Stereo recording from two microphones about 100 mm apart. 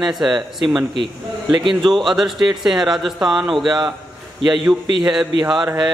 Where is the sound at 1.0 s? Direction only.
55° right (ahead or behind).